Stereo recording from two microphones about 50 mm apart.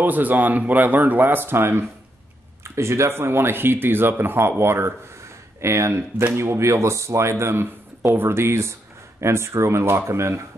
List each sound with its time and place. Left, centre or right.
0.0 s speech: right
2.6 s speech: right
5.6 s speech: right
6.3 s speech: right